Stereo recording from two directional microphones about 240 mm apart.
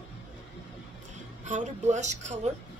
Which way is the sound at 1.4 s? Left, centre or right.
Right.